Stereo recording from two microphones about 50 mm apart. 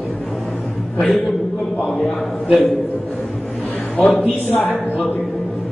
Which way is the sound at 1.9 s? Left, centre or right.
Centre.